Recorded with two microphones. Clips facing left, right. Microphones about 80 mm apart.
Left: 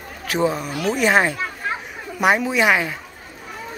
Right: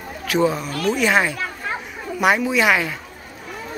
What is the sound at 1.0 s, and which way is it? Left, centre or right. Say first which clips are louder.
A woman's voice: left 3 dB; left.